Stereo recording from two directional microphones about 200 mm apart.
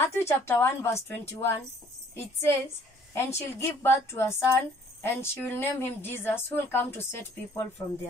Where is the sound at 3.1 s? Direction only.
10° left (ahead or behind).